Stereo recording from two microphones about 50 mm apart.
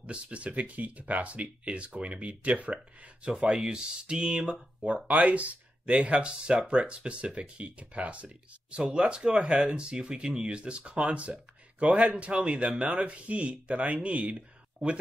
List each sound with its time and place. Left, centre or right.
0.0 s speech: right